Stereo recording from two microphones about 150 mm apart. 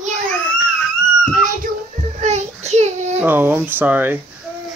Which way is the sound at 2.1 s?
50° right (ahead or behind).